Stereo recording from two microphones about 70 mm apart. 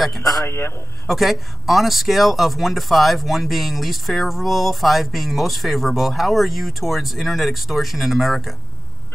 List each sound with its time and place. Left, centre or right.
0.2 s a man's voice: left
0.5 s a man's voice: left
1.0 s speech: centre